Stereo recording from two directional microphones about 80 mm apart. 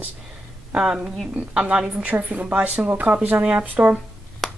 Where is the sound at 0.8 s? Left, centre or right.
Centre.